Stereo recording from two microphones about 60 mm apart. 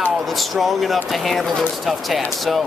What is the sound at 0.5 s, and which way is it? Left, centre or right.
Speech, centre.